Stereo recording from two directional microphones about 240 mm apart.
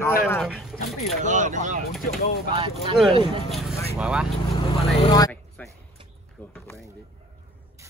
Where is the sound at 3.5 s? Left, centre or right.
Centre.